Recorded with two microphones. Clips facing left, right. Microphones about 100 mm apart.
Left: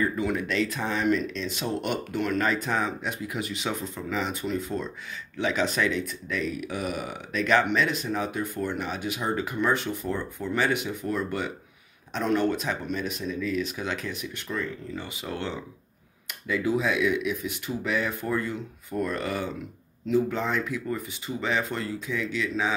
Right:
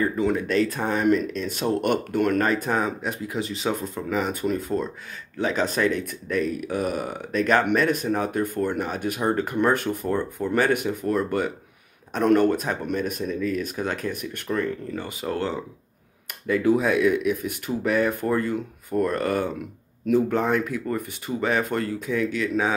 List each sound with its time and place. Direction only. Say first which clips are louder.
0.1 s speech: right 5 dB; 30° right (ahead or behind)
3.8 s speech: right 4 dB; 45° right (ahead or behind)